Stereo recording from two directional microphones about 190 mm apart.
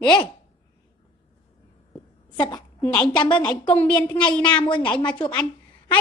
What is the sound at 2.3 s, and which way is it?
Speech, 20° left (ahead or behind).